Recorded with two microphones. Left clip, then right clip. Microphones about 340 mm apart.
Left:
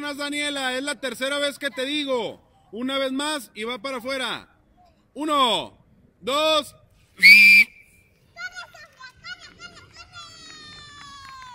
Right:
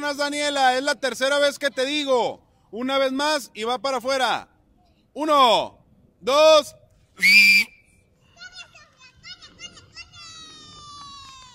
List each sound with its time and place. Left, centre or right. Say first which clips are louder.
0.0 s speech: right 3 dB; centre
6.2 s a sound: right 6 dB; centre
8.4 s children playing: left 6 dB; left